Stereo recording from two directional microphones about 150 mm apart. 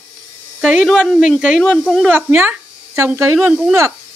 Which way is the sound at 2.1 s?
15° right (ahead or behind).